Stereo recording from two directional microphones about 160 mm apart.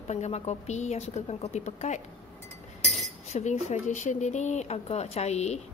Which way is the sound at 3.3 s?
45° left (ahead or behind).